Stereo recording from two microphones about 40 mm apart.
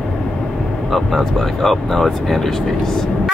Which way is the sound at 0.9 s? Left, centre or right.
Centre.